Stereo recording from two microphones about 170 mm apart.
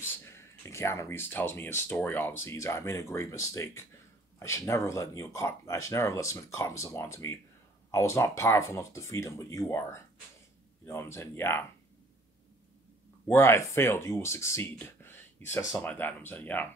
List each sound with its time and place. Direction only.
0.2 s speech: 15° left (ahead or behind)
13.3 s speech: 15° left (ahead or behind)